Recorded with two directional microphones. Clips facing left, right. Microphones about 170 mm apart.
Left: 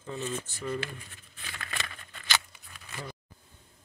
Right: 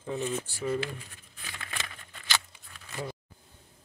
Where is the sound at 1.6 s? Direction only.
10° right (ahead or behind).